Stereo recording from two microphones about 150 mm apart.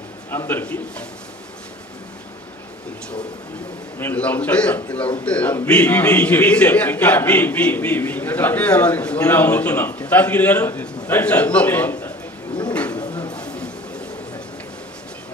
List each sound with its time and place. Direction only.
0.3 s a man's voice: 15° left (ahead or behind)
4.0 s a man's voice: 10° left (ahead or behind)
12.9 s bird: 30° left (ahead or behind)
13.3 s a sound: 5° left (ahead or behind)